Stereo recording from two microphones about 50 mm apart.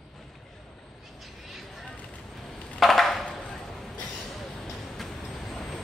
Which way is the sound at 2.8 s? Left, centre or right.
Centre.